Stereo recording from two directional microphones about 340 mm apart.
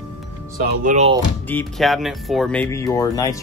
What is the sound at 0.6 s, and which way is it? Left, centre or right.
Speech, right.